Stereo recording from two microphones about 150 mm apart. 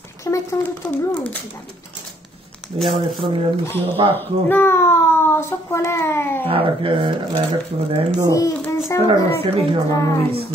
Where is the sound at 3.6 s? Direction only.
15° left (ahead or behind).